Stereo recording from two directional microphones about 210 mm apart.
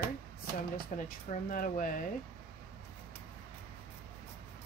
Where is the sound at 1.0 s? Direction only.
40° left (ahead or behind).